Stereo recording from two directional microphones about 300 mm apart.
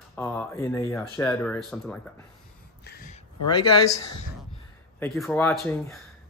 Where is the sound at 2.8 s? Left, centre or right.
Left.